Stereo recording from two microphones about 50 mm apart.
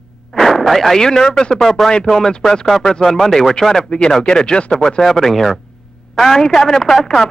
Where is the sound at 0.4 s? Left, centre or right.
Centre.